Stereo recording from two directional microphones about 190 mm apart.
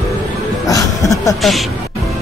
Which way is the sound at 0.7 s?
15° left (ahead or behind).